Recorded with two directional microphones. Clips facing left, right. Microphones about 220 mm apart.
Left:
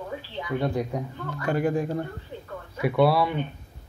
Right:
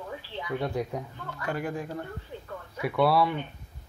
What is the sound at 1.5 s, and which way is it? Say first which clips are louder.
Speech: left 8 dB; 25° left (ahead or behind).